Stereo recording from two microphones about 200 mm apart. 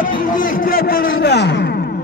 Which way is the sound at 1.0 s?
60° left (ahead or behind).